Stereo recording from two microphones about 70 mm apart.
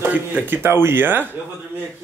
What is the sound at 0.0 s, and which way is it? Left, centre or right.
Speech, right.